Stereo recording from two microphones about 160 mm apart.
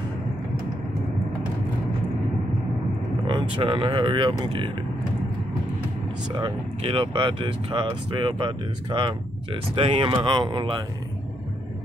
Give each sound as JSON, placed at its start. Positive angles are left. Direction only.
{"t": 3.3, "sound": "speech", "side_deg": -30}
{"t": 6.4, "sound": "speech", "side_deg": -35}